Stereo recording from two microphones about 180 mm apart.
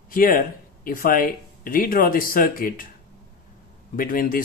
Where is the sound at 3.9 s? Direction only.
50° left (ahead or behind).